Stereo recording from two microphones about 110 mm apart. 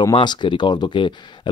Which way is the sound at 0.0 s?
40° left (ahead or behind).